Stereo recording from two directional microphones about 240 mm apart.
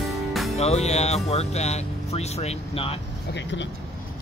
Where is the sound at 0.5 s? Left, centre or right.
Left.